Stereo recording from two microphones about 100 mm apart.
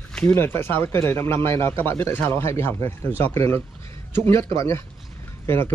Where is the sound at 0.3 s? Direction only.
25° left (ahead or behind).